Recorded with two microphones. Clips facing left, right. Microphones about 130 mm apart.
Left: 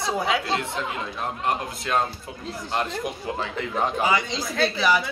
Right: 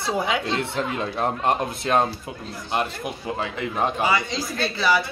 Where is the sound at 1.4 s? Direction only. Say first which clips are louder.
Right 4 dB; 25° right (ahead or behind).